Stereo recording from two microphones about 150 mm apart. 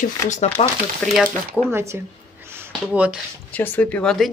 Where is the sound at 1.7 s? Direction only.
20° right (ahead or behind).